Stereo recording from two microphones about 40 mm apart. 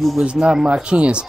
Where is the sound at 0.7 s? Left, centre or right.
Right.